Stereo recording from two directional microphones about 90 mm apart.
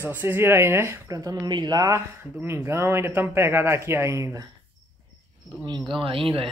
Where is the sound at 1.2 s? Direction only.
45° right (ahead or behind).